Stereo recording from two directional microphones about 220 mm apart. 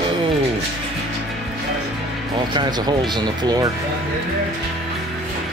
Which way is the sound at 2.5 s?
20° right (ahead or behind).